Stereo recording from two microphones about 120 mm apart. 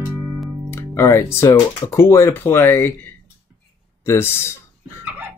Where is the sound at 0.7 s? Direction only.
20° left (ahead or behind).